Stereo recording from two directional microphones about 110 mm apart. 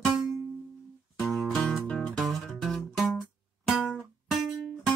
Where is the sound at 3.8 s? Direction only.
10° left (ahead or behind).